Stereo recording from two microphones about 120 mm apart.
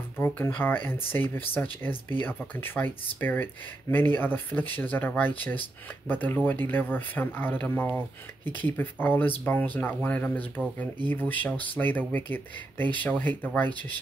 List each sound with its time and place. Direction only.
0.2 s speech: 15° left (ahead or behind)